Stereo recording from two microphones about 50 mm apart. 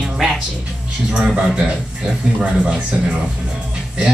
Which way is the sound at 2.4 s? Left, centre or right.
Right.